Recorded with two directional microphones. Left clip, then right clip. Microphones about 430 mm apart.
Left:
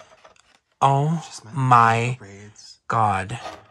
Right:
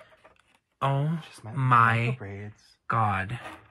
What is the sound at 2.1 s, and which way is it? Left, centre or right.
Speech, centre.